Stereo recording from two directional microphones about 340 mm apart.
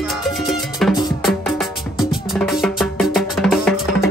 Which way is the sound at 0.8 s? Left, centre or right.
Centre.